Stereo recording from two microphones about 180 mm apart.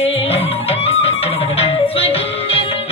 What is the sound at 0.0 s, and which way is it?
Music, 35° left (ahead or behind).